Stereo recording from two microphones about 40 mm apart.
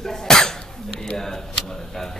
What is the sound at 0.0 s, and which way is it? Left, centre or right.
Cough, centre.